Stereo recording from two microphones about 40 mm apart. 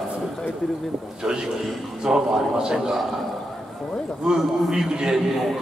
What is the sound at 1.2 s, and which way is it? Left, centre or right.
A man's voice, centre.